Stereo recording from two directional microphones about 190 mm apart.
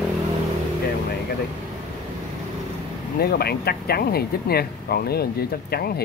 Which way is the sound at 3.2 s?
55° left (ahead or behind).